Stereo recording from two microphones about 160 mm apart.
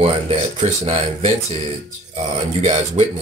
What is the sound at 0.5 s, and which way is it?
Speech, 40° right (ahead or behind).